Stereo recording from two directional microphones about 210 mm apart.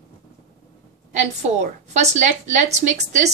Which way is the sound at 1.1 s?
35° right (ahead or behind).